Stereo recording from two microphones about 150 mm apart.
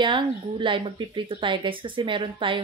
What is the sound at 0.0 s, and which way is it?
Speech, 30° right (ahead or behind).